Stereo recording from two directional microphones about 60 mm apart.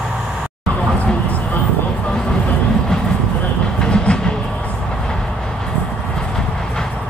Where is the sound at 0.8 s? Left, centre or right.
Centre.